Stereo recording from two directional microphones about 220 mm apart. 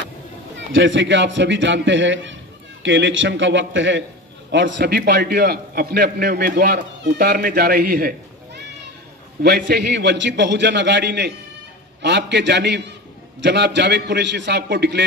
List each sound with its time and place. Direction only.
0.7 s a man's voice: 60° right (ahead or behind)
9.4 s a man's voice: 45° right (ahead or behind)